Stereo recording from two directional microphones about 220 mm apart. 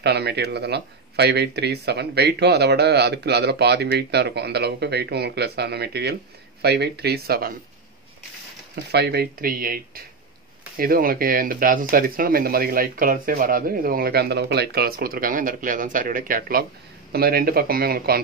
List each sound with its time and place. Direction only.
0.0 s speech: 50° right (ahead or behind)
8.9 s speech: 45° right (ahead or behind)